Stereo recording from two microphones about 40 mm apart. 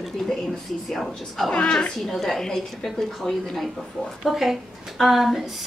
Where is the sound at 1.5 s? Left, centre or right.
Left.